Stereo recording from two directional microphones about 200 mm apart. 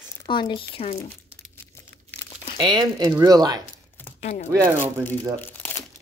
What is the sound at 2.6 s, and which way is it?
Speech, 20° right (ahead or behind).